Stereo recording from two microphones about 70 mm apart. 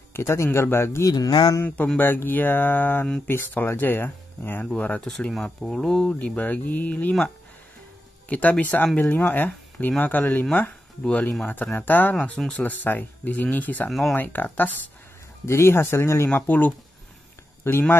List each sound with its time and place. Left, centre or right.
0.1 s speech: left
1.1 s speech: left
2.0 s speech: left
5.0 s speech: centre
6.1 s speech: left
8.3 s speech: left
12.2 s speech: centre
12.5 s speech: left
13.8 s speech: centre
14.1 s speech: left
15.4 s speech: left
16.3 s speech: left